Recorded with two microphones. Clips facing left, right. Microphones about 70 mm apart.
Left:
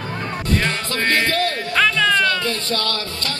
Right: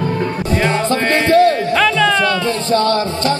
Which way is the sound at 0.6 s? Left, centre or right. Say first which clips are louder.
Right 7 dB; centre.